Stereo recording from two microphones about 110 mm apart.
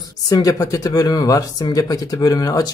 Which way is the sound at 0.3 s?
35° left (ahead or behind).